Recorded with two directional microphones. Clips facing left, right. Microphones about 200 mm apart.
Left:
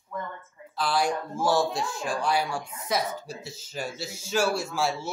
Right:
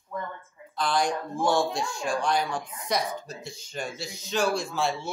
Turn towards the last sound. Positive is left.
turn(degrees=5)  # may be behind; listen again after turning